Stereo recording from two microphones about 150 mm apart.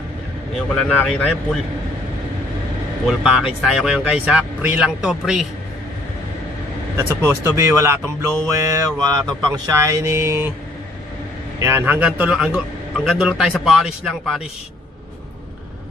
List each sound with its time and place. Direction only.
0.6 s a man's voice: 5° left (ahead or behind)
3.1 s a man's voice: centre (ahead or behind)
7.0 s speech: 15° right (ahead or behind)
11.6 s a man's voice: 15° right (ahead or behind)